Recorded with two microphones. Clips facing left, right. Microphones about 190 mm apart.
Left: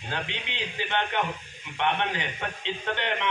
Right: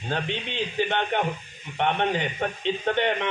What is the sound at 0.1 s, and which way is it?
A man's voice, 50° right (ahead or behind).